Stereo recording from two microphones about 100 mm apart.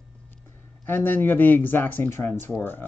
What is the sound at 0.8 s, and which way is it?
Speech, 20° left (ahead or behind).